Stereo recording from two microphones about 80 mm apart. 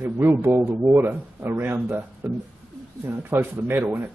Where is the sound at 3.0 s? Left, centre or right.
Right.